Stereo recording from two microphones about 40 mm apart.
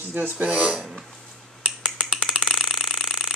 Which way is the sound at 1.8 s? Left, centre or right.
Centre.